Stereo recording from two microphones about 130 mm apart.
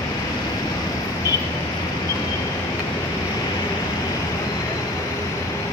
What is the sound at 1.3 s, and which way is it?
Vehicle, 25° left (ahead or behind).